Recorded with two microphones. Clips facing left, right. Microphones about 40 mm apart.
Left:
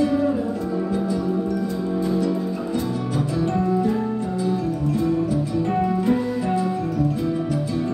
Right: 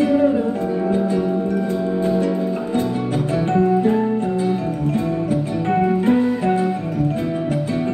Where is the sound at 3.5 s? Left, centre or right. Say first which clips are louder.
Right 7 dB; right.